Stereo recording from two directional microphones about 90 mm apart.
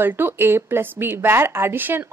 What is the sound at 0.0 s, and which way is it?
Speech, 25° right (ahead or behind).